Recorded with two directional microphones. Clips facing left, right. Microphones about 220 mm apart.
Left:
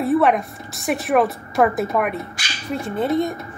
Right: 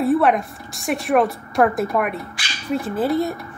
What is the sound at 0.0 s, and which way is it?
A woman's voice, centre (ahead or behind).